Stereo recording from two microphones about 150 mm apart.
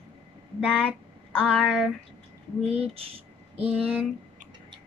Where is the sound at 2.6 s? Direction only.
45° right (ahead or behind).